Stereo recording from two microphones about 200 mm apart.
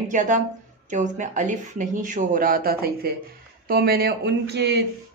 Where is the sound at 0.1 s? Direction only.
40° right (ahead or behind); by 4.8 s 55° right (ahead or behind).